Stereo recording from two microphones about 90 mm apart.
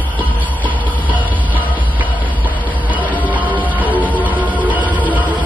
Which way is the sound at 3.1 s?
20° right (ahead or behind).